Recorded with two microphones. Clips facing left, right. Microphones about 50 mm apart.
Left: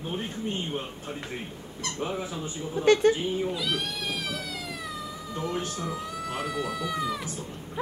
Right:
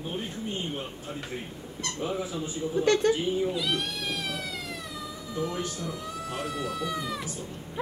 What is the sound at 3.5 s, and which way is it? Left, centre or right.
Speech, centre.